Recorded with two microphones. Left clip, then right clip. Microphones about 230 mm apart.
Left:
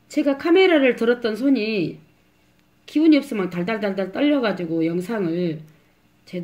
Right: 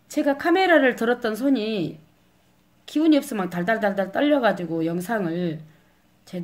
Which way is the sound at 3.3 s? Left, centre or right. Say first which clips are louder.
Right 1 dB; centre.